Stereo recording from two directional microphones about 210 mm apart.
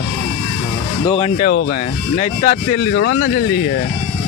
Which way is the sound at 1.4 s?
45° left (ahead or behind).